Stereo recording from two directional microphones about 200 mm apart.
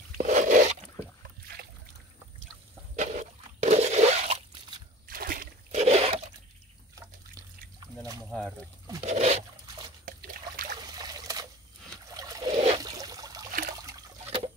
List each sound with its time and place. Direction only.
0.2 s squish: 40° right (ahead or behind)
3.0 s a sound: 35° right (ahead or behind)
5.0 s splash: 45° right (ahead or behind)
5.8 s toilet flush: 30° right (ahead or behind)
8.3 s pour: 5° left (ahead or behind)
9.0 s zipper: 35° right (ahead or behind)
10.2 s trickle: 45° right (ahead or behind)
10.8 s trickle: 20° right (ahead or behind)
13.5 s toilet flush: 45° right (ahead or behind)
13.8 s water: 20° right (ahead or behind)